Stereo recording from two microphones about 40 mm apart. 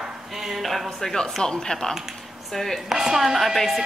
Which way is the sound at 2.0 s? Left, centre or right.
Centre.